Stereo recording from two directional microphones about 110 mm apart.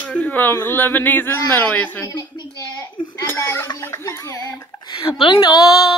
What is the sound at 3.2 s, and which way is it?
A woman's voice, 20° left (ahead or behind).